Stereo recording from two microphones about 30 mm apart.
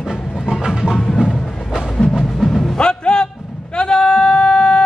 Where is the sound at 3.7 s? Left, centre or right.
Left.